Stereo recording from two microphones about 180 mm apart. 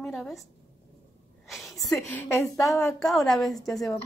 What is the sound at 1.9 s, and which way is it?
Speech, 10° left (ahead or behind).